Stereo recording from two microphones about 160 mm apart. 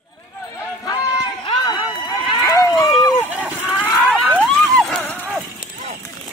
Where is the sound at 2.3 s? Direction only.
20° left (ahead or behind).